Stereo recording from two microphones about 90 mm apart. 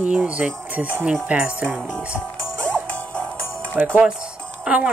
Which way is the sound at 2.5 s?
30° right (ahead or behind).